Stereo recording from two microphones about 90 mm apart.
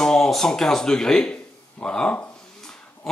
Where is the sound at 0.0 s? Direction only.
5° left (ahead or behind).